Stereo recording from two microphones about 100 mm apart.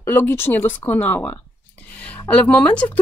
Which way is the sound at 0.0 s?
25° left (ahead or behind).